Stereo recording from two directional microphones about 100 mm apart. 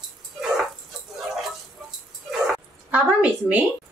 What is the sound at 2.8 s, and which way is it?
Speech, 15° right (ahead or behind).